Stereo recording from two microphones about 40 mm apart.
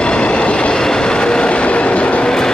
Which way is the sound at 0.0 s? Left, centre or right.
Left.